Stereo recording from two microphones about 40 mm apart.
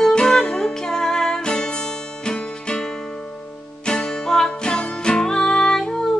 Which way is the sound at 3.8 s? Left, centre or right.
Centre.